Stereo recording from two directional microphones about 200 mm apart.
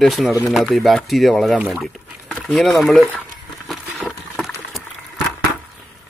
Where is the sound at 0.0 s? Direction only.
Centre (ahead or behind).